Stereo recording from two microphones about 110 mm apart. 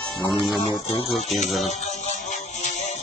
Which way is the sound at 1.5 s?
Centre (ahead or behind).